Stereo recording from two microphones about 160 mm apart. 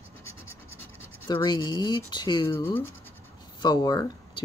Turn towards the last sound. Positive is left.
turn(degrees=25)  # may be behind; listen again after turning